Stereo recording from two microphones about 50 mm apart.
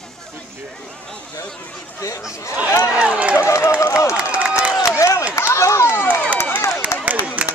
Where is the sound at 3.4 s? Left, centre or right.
Left.